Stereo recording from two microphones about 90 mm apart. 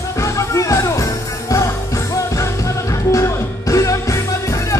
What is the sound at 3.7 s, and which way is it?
Music, 35° left (ahead or behind).